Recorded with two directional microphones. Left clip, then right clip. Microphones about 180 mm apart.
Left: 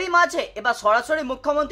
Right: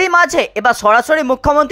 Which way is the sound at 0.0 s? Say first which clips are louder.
Right 8 dB; 45° right (ahead or behind).